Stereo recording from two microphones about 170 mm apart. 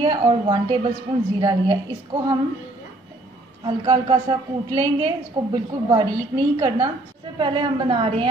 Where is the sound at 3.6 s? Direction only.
25° right (ahead or behind).